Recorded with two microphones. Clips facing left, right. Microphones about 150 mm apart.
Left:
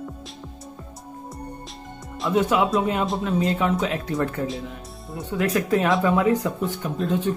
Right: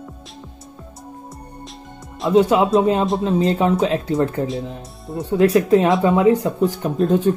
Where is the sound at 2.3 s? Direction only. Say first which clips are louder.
Right 6 dB; 30° right (ahead or behind).